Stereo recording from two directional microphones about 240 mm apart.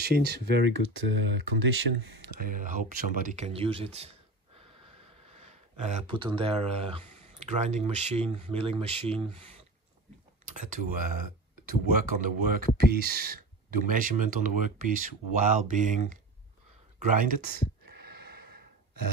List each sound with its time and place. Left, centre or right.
0.0 s speech: right
5.4 s speech: right
17.8 s a sound: right